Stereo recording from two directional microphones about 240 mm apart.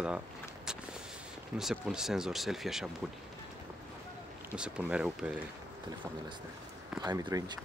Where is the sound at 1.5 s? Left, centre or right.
Centre.